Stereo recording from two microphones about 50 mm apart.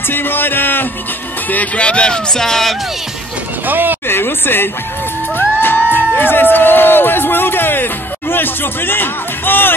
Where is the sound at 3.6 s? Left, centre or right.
Right.